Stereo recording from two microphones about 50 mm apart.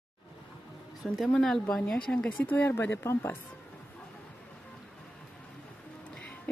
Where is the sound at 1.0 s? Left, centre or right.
Centre.